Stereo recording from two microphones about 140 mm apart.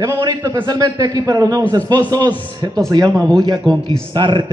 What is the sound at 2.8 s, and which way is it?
Music, 30° right (ahead or behind).